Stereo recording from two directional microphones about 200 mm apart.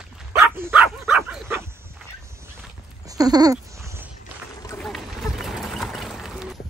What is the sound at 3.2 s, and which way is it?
Speech, 20° right (ahead or behind).